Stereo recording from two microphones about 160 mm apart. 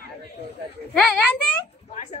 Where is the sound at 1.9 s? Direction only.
45° left (ahead or behind).